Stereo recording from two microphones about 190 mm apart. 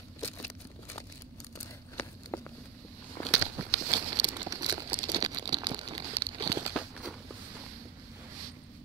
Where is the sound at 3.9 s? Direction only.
20° right (ahead or behind).